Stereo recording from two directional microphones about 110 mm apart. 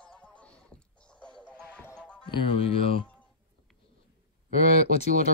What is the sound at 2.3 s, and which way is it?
Speech, 50° left (ahead or behind).